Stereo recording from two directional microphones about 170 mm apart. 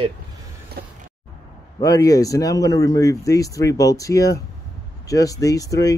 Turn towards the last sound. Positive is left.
turn(degrees=20)  # may be behind; listen again after turning